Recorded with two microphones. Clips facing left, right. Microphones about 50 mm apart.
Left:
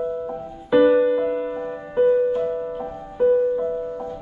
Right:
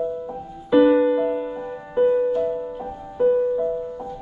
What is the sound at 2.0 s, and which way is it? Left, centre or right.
Music, centre.